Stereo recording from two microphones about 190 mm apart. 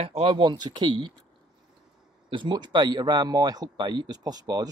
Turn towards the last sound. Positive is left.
turn(degrees=-20)  # may be behind; listen again after turning